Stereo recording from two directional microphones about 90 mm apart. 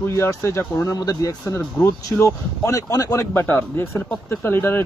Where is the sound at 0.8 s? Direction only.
45° left (ahead or behind).